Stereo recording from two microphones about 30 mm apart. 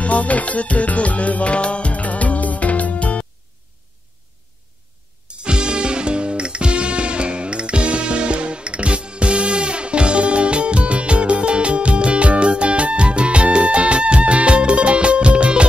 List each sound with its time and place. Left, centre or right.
0.0 s music: left
5.3 s music: right